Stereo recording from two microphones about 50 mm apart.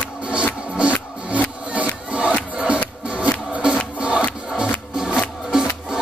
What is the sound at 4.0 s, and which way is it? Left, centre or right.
Music, right.